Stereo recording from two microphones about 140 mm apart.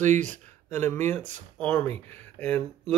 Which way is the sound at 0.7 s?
15° left (ahead or behind).